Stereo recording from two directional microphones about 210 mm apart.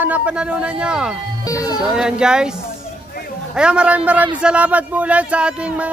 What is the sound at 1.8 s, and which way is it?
Speech, 5° right (ahead or behind).